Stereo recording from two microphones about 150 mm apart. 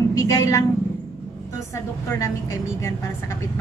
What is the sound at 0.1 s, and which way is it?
A woman's voice, 25° left (ahead or behind).